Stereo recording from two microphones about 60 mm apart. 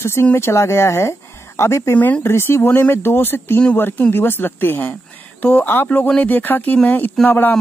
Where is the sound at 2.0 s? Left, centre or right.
Left.